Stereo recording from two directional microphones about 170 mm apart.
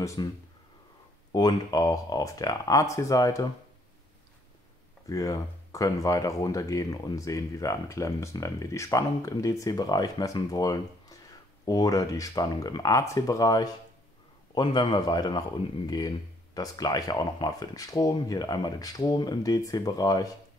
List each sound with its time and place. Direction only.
0.0 s speech: 20° left (ahead or behind)
1.3 s speech: 20° left (ahead or behind)
5.0 s speech: 20° left (ahead or behind)
16.5 s speech: 20° left (ahead or behind)